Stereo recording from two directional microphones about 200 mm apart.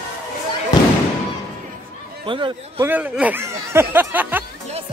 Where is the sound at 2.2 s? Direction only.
25° right (ahead or behind).